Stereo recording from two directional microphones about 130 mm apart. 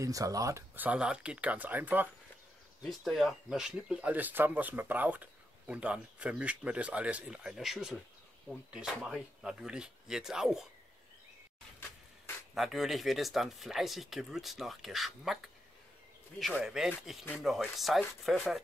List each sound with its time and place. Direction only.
0.0 s speech: 25° right (ahead or behind)
0.7 s speech: 10° right (ahead or behind)
2.8 s speech: centre (ahead or behind)
12.5 s speech: centre (ahead or behind)
16.6 s speech: 5° right (ahead or behind)